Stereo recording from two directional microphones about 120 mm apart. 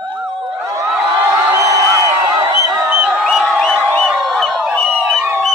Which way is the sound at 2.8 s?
5° right (ahead or behind).